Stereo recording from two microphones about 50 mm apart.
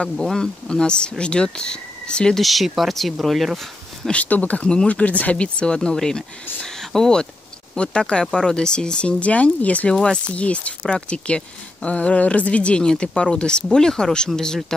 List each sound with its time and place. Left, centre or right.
0.0 s a woman's voice: centre
2.3 s speech: centre
4.1 s a woman's voice: left; by 14.6 s centre